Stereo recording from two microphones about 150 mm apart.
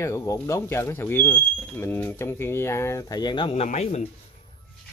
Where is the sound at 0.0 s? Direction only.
20° left (ahead or behind); by 3.6 s 35° left (ahead or behind).